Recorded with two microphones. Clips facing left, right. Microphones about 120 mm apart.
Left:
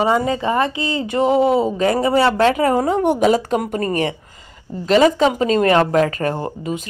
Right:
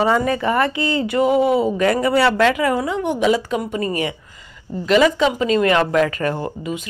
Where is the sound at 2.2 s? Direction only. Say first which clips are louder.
Left 1 dB; 35° left (ahead or behind).